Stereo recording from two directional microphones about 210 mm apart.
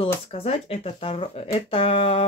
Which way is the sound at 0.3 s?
30° left (ahead or behind).